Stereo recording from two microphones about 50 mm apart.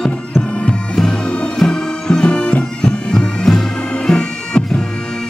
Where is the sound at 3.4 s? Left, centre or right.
Centre.